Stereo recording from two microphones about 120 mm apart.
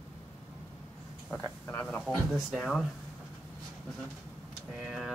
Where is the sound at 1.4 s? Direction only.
15° left (ahead or behind).